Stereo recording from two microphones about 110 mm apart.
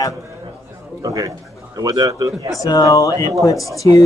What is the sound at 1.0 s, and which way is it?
Speech, 35° right (ahead or behind).